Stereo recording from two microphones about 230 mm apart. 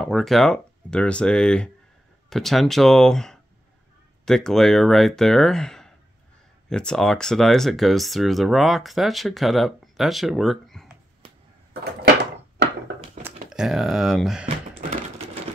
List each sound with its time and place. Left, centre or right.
0.0 s speech: centre
12.0 s door: right
13.2 s speech: centre
14.8 s typewriter: right